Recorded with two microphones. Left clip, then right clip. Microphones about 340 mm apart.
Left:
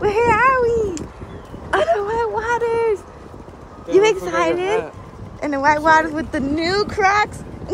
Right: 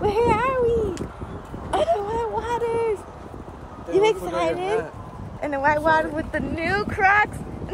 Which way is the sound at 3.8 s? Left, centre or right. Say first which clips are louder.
Left 5 dB; left.